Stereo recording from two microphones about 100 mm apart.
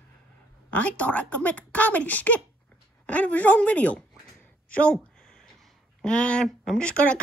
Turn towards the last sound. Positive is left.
turn(degrees=10)  # may be behind; listen again after turning